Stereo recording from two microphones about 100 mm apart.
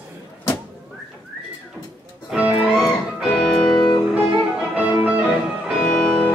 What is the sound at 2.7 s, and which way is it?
Music, centre (ahead or behind).